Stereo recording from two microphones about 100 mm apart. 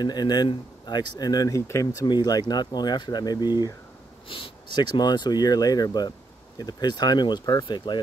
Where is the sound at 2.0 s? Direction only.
45° left (ahead or behind).